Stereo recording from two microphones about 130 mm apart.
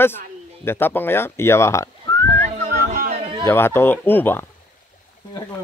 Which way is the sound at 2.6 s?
90° right.